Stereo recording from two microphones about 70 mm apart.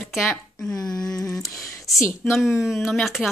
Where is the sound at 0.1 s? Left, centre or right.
Centre.